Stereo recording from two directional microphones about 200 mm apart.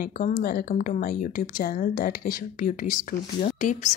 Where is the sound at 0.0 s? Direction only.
45° left (ahead or behind).